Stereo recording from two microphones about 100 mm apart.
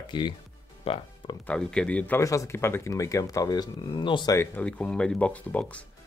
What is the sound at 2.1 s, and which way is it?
Speech, 30° left (ahead or behind).